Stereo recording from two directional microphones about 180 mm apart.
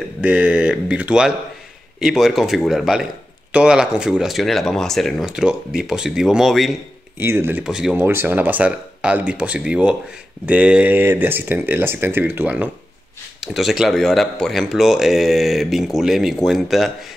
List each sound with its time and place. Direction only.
0.2 s speech: 5° right (ahead or behind)
7.2 s speech: 15° right (ahead or behind)